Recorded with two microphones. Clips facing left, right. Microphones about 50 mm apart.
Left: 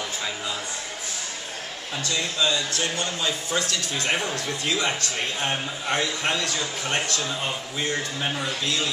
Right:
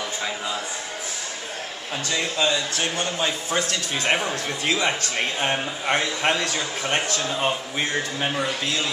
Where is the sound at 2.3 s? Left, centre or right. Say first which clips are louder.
Right 1 dB; right.